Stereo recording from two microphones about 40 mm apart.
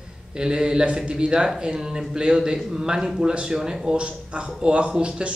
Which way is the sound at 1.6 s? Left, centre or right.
Centre.